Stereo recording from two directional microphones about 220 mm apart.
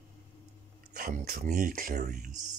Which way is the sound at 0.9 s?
40° right (ahead or behind).